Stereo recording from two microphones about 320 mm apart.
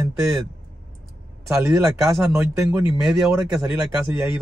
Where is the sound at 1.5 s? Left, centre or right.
Centre.